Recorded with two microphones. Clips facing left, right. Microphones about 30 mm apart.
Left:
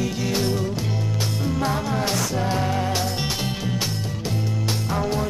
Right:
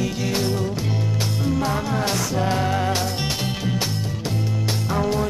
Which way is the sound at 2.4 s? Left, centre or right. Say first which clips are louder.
Right 4 dB; centre.